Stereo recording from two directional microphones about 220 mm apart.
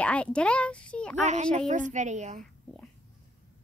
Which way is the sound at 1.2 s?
35° right (ahead or behind).